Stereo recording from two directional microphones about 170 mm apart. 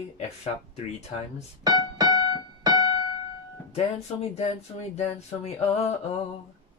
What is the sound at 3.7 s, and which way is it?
Speech, 40° left (ahead or behind).